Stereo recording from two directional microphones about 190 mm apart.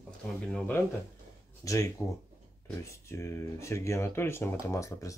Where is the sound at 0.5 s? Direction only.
5° left (ahead or behind).